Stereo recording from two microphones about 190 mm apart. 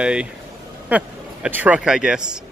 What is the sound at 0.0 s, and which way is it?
A man's voice, 5° right (ahead or behind).